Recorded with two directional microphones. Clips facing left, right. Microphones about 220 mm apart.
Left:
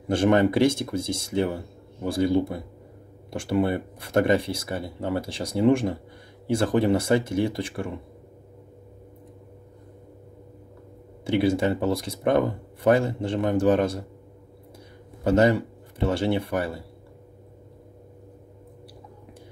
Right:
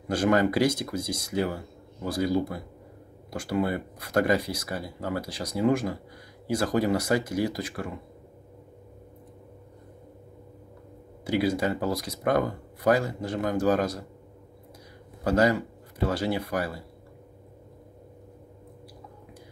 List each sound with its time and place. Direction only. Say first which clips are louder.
0.1 s speech: left 3 dB; 25° left (ahead or behind)
11.2 s speech: left 3 dB; 25° left (ahead or behind)
15.2 s speech: left 3 dB; 25° left (ahead or behind)